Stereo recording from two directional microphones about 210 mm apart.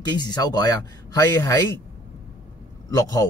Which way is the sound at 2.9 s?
15° left (ahead or behind).